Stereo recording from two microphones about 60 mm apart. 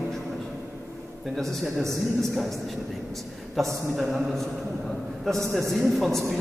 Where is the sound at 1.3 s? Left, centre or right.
Centre.